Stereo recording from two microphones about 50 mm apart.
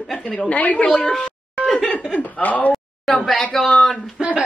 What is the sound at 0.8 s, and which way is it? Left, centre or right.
A woman's voice, centre.